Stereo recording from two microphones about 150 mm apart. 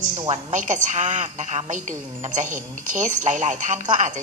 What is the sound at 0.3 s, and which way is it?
A woman's voice, 55° right (ahead or behind).